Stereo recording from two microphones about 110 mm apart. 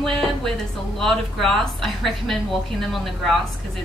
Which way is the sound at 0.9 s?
5° left (ahead or behind).